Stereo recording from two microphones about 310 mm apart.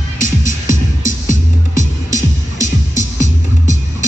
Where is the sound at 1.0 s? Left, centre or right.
Left.